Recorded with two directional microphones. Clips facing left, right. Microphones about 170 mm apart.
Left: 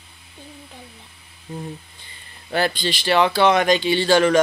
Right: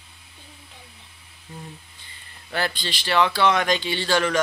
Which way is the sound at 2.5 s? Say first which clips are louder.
Left 6 dB; 20° left (ahead or behind).